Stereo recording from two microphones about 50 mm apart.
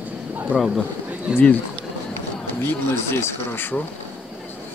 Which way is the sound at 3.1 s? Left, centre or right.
Left.